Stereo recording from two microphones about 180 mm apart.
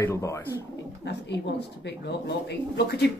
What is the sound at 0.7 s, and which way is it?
Speech, 70° left (ahead or behind).